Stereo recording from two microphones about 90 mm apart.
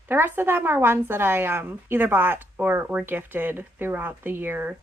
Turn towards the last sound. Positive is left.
turn(degrees=-20)  # may be behind; listen again after turning